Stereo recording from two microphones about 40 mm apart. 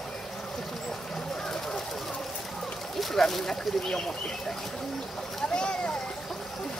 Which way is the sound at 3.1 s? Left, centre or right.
Centre.